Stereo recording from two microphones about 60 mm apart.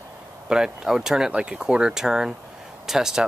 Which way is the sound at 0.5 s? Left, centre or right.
Centre.